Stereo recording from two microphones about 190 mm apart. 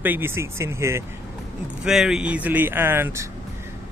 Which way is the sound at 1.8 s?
5° right (ahead or behind).